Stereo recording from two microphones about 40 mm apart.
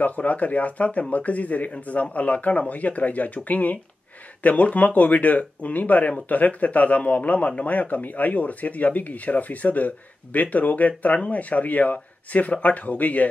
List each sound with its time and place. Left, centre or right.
0.0 s speech: left